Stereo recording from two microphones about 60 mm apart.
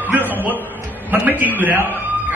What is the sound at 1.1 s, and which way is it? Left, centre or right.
Speech, right.